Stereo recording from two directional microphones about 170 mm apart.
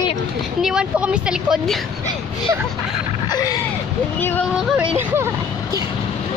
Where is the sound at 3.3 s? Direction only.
25° left (ahead or behind).